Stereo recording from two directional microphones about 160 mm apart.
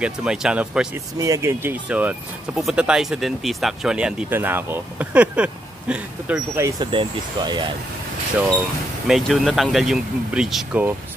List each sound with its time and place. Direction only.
0.0 s speech: 5° right (ahead or behind)
1.1 s speech: 20° right (ahead or behind)
6.8 s speech: 30° right (ahead or behind)
9.0 s speech: centre (ahead or behind)